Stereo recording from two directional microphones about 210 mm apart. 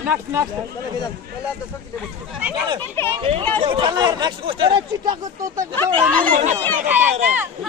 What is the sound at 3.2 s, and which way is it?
Speech, 25° right (ahead or behind).